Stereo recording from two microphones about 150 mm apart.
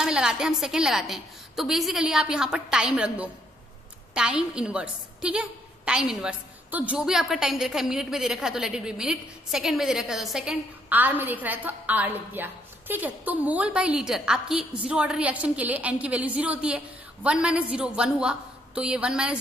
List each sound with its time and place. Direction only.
0.0 s a woman's voice: 5° right (ahead or behind)